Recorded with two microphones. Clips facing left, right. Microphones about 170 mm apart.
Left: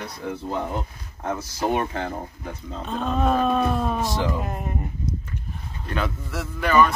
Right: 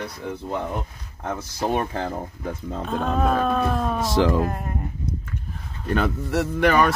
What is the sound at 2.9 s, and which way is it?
Speech, 5° right (ahead or behind).